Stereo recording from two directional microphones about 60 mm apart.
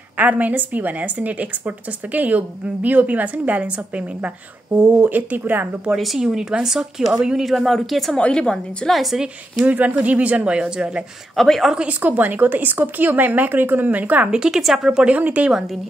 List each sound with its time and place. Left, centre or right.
0.2 s a woman's voice: right
5.9 s speech: centre
7.4 s speech: centre
8.2 s a woman's voice: centre
8.9 s speech: centre
9.7 s a woman's voice: right
11.3 s speech: centre
11.7 s speech: right
14.4 s speech: centre
15.0 s a woman's voice: right
15.5 s speech: centre